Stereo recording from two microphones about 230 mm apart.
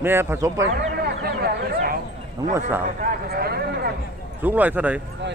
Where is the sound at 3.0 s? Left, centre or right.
Right.